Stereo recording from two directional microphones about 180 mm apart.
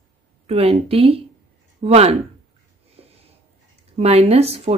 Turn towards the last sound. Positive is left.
turn(degrees=-35)  # may be behind; listen again after turning